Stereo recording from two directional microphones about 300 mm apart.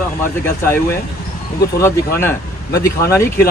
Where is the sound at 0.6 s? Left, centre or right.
Centre.